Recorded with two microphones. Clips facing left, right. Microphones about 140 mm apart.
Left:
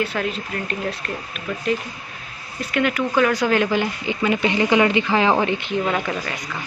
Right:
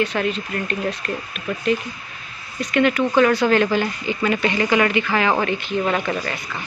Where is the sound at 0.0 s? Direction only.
5° left (ahead or behind).